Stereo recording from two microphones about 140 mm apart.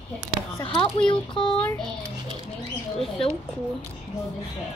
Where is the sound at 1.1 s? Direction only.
35° left (ahead or behind).